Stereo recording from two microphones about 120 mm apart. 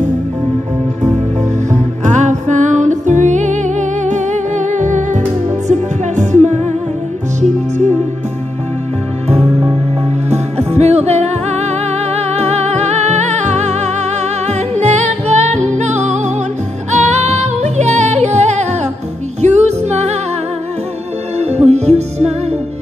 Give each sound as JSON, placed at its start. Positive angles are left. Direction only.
{"t": 1.7, "sound": "music", "side_deg": -85}
{"t": 10.3, "sound": "music", "side_deg": -65}
{"t": 21.4, "sound": "music", "side_deg": -65}